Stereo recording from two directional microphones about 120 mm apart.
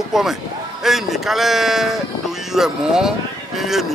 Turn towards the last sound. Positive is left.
turn(degrees=0)  # may be behind; listen again after turning